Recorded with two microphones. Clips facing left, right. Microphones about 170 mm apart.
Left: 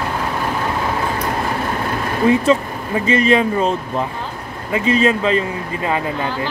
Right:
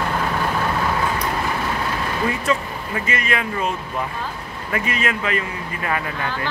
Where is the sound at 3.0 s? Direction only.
30° left (ahead or behind).